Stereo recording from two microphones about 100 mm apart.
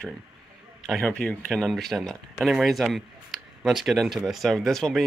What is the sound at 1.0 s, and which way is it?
Speech, 10° left (ahead or behind).